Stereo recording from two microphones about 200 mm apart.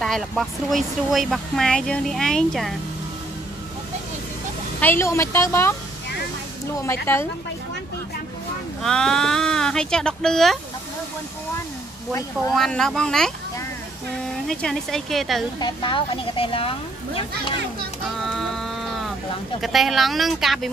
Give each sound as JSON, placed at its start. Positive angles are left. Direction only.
{"t": 0.0, "sound": "speech", "side_deg": 0}
{"t": 4.7, "sound": "a woman's voice", "side_deg": 10}
{"t": 6.8, "sound": "a woman's voice", "side_deg": 15}
{"t": 8.8, "sound": "speech", "side_deg": 0}
{"t": 12.1, "sound": "a woman's voice", "side_deg": 15}
{"t": 12.5, "sound": "speech", "side_deg": 0}
{"t": 14.5, "sound": "speech", "side_deg": 0}
{"t": 15.6, "sound": "speech", "side_deg": 25}
{"t": 18.1, "sound": "a sound", "side_deg": 0}
{"t": 19.6, "sound": "speech", "side_deg": 0}